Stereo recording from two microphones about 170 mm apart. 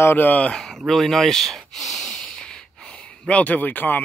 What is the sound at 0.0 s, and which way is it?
Speech, 10° left (ahead or behind).